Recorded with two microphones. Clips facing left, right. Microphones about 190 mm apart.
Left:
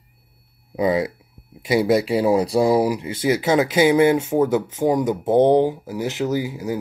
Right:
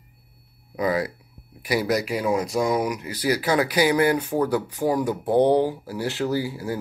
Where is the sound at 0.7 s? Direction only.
25° left (ahead or behind).